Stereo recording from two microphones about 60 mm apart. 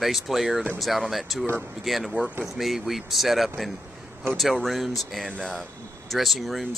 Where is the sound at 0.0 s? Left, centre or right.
Centre.